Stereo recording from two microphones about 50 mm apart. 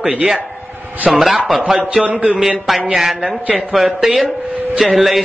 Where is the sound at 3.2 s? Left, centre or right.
Right.